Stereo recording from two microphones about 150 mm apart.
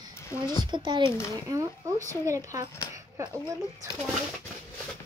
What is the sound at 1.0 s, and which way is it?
Speech, 15° left (ahead or behind).